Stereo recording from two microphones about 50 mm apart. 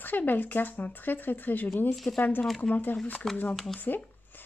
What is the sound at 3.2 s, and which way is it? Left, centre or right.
Speech, centre.